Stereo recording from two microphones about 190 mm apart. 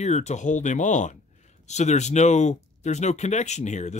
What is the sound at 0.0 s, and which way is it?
Speech, 35° left (ahead or behind).